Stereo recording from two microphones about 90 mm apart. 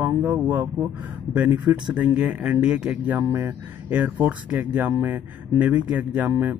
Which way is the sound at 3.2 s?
30° right (ahead or behind).